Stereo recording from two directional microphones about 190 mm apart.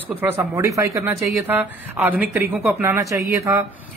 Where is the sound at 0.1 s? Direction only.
10° right (ahead or behind).